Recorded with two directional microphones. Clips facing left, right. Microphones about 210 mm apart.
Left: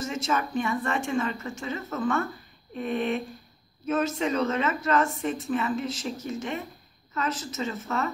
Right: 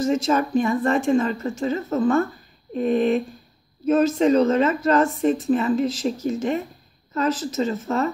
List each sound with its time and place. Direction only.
0.0 s speech: 35° right (ahead or behind)